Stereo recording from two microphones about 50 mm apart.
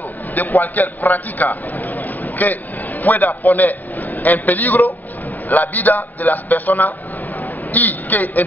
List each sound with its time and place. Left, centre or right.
0.3 s a man's voice: left